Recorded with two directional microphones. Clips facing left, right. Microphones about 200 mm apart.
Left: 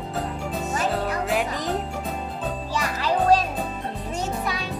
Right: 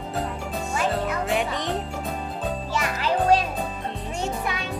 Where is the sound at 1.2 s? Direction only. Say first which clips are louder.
Even; centre (ahead or behind).